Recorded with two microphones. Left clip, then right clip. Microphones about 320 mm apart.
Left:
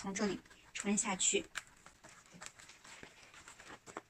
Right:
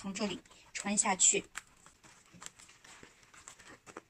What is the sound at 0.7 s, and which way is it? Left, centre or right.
Speech, centre.